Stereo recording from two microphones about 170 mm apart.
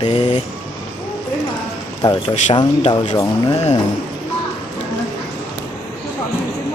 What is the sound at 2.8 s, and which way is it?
Speech, 40° left (ahead or behind).